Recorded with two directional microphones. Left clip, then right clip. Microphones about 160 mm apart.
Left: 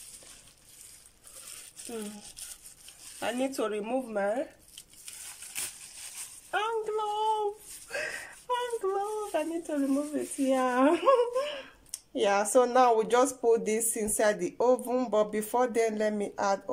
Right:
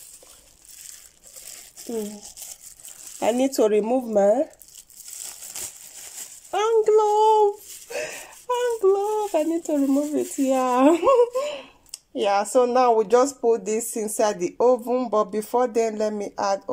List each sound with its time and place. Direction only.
3.2 s speech: 35° right (ahead or behind)
6.5 s child singing: 30° right (ahead or behind)
7.9 s speech: 20° right (ahead or behind)